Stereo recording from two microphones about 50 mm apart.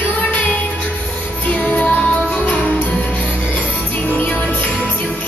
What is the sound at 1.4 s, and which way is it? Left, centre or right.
Music, left.